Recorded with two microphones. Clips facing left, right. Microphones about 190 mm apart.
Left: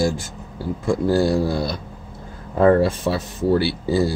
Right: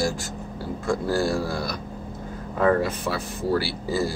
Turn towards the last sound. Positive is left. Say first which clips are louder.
# left 6 dB
turn(degrees=25)  # may be behind; listen again after turning